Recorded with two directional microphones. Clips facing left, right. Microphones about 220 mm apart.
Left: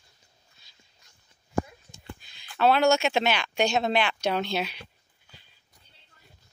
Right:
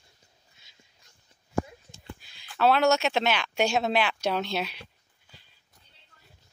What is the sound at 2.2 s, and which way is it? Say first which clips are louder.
Speech: left 1 dB; 5° right (ahead or behind).